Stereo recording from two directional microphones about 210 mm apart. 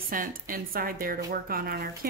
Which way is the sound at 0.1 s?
40° right (ahead or behind).